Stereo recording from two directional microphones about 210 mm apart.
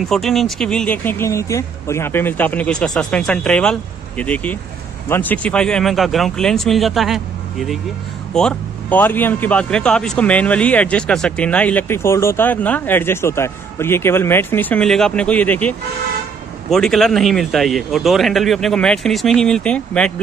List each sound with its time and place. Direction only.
0.0 s a man's voice: centre (ahead or behind)
16.7 s speech: centre (ahead or behind)